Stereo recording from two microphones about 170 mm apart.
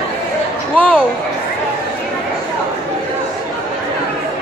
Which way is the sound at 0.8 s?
5° left (ahead or behind).